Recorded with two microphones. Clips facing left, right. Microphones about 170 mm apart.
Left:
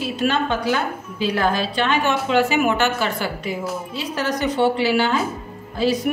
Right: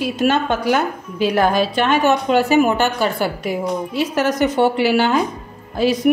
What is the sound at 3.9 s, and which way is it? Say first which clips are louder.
A woman's voice: right 7 dB; 50° right (ahead or behind).